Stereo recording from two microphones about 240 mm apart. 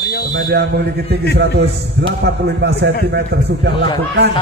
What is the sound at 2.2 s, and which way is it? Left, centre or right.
A man's voice, right.